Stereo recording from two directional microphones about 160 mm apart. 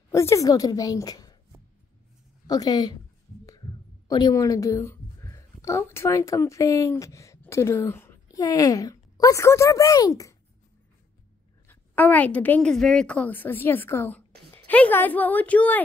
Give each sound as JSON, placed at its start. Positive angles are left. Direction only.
{"t": 0.1, "sound": "a woman's voice", "side_deg": 20}
{"t": 2.4, "sound": "a woman's voice", "side_deg": 25}
{"t": 4.1, "sound": "a woman's voice", "side_deg": 25}
{"t": 11.6, "sound": "a woman's voice", "side_deg": 10}